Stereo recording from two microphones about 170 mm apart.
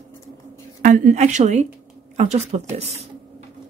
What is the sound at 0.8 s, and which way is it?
A woman's voice, 50° right (ahead or behind).